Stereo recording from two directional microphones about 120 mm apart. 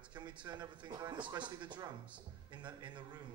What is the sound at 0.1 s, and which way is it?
A man's voice, 40° right (ahead or behind).